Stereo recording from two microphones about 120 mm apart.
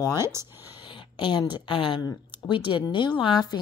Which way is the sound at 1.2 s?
40° left (ahead or behind).